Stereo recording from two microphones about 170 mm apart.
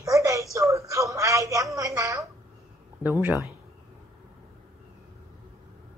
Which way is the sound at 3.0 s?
10° right (ahead or behind).